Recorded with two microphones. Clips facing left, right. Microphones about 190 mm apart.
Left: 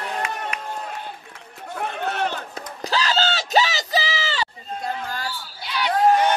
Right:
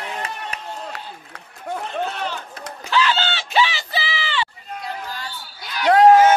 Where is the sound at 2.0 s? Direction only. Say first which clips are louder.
Left 3 dB; 55° left (ahead or behind).